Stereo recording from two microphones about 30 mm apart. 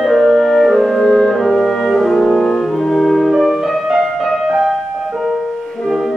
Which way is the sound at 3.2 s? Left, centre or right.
Centre.